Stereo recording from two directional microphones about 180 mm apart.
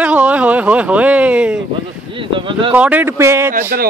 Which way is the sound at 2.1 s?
30° right (ahead or behind).